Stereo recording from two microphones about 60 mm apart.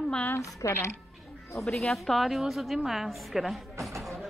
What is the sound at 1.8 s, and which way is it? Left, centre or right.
A woman's voice, centre.